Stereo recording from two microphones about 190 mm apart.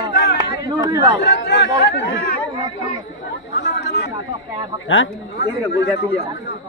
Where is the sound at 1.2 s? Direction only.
60° left (ahead or behind).